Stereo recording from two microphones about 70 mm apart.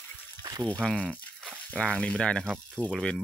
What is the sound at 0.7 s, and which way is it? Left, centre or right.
Speech, centre.